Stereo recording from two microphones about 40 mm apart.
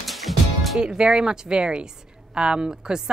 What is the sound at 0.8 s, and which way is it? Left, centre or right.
Speech, centre.